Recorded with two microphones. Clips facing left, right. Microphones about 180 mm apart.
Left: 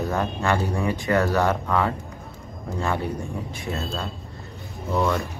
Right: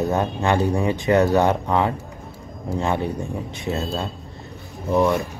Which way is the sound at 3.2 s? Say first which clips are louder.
Right 3 dB; 20° right (ahead or behind).